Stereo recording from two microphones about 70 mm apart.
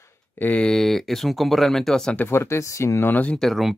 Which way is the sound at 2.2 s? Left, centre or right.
Left.